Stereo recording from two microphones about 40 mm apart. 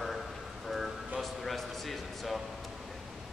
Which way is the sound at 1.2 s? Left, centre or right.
Centre.